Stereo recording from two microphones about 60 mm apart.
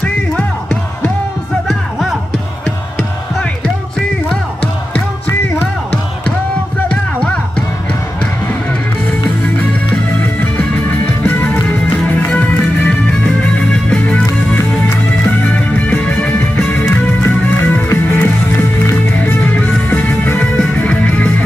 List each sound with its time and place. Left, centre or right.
1.7 s music: centre
10.6 s music: left